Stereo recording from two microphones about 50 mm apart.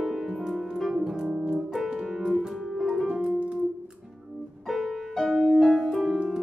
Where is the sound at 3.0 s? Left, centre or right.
Centre.